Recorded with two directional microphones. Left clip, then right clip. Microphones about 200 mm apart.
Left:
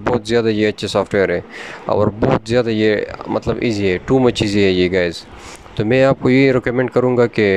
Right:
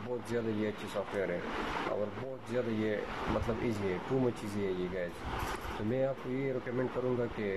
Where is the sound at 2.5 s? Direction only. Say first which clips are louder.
Left 15 dB; 55° left (ahead or behind).